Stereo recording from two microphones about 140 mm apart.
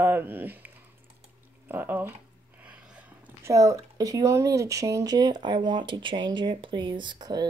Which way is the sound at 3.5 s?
25° right (ahead or behind).